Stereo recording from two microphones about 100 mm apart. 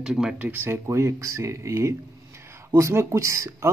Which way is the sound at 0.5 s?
20° right (ahead or behind).